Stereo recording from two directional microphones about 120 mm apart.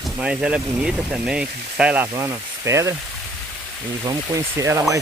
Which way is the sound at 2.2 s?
25° right (ahead or behind).